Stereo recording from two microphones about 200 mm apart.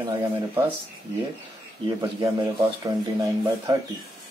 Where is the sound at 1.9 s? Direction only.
20° right (ahead or behind).